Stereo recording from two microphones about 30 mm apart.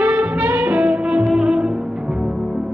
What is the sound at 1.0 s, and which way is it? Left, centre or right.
Music, right.